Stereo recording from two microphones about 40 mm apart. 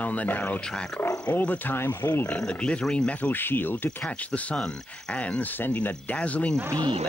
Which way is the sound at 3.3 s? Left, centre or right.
Left.